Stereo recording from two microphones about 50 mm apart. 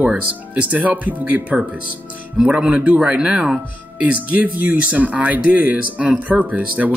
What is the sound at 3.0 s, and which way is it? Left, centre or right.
Speech, centre.